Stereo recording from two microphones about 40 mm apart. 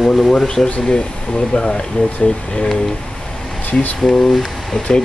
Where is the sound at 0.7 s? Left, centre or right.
Left.